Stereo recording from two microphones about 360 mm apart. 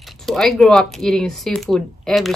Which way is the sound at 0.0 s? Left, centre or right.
Centre.